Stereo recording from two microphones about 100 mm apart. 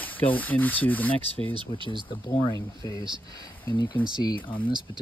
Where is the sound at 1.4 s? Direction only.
55° right (ahead or behind).